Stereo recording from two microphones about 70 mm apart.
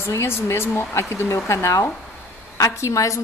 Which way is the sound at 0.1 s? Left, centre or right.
Left.